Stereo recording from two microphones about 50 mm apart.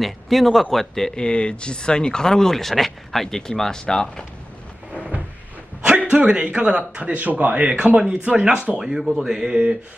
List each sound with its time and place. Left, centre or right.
0.0 s speech: centre
5.9 s a man's voice: right